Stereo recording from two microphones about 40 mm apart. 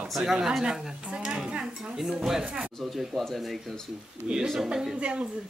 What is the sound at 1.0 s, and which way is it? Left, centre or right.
Dishes, right.